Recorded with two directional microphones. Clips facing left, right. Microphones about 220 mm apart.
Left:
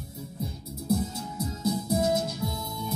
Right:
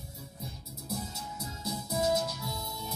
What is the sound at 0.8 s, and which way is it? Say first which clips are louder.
Music: left 11 dB; 55° left (ahead or behind).